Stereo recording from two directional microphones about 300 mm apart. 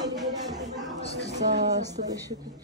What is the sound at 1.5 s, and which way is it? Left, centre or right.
Speech, right.